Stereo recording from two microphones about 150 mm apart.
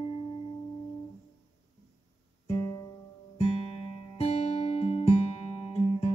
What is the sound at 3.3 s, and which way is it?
Music, 40° left (ahead or behind).